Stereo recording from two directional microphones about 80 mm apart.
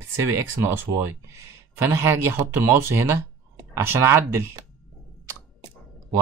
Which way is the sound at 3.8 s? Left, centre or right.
Right.